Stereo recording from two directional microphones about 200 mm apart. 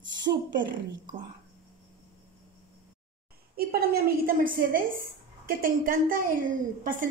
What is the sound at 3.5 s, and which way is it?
A woman's voice, 50° right (ahead or behind).